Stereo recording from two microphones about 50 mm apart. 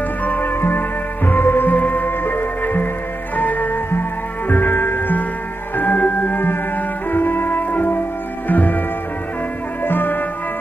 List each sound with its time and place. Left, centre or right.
0.2 s music: left
9.8 s music: left